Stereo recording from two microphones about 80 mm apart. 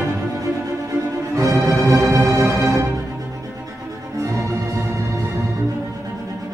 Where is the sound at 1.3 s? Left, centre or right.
Right.